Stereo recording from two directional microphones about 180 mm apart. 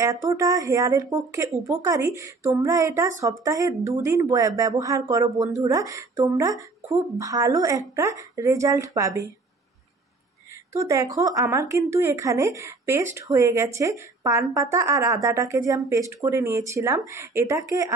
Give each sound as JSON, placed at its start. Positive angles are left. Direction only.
{"t": 0.0, "sound": "speech", "side_deg": -15}
{"t": 10.7, "sound": "speech", "side_deg": -15}